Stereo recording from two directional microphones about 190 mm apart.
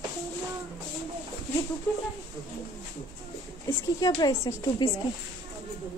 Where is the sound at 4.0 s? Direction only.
20° left (ahead or behind).